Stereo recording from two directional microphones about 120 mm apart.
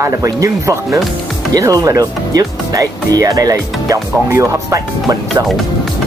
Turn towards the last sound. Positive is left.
turn(degrees=-25)  # may be behind; listen again after turning